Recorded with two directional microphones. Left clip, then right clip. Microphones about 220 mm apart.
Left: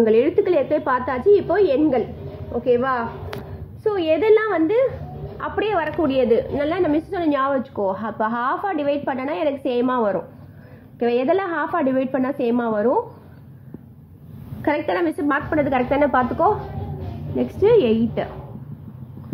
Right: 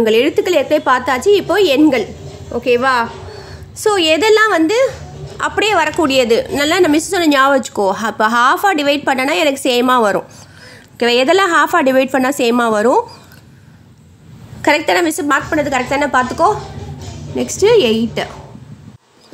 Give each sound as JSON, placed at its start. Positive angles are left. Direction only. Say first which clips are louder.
{"t": 0.0, "sound": "a woman's voice", "louder": "right 4 dB", "side_deg": -25}
{"t": 14.6, "sound": "a woman's voice", "louder": "right 8 dB", "side_deg": -25}